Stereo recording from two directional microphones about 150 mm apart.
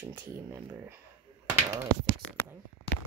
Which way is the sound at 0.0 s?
15° right (ahead or behind).